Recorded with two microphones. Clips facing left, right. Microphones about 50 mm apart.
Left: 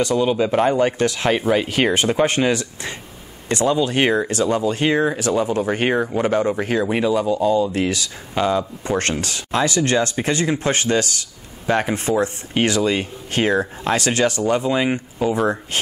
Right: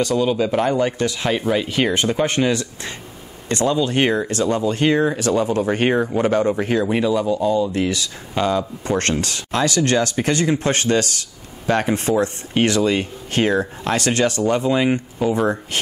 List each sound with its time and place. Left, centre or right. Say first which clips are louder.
0.1 s speech: left 1 dB; centre
7.9 s speech: even; centre